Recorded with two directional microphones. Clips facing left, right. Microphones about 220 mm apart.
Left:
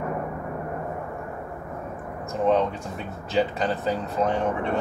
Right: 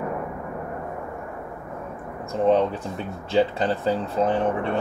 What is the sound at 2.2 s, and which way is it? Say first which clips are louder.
Speech: right 2 dB; 30° right (ahead or behind).